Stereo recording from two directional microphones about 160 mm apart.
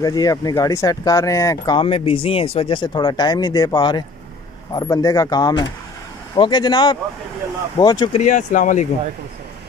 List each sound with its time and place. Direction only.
0.0 s speech: 25° left (ahead or behind)
1.8 s speech: 35° left (ahead or behind)
8.1 s speech: 50° left (ahead or behind)